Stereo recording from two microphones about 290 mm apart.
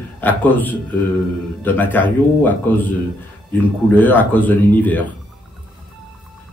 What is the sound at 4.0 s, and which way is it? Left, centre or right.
Speech, centre.